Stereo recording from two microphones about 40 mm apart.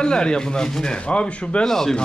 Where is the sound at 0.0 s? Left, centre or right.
Left.